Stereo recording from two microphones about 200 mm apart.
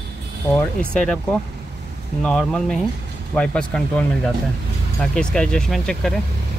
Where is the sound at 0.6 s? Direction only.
5° left (ahead or behind).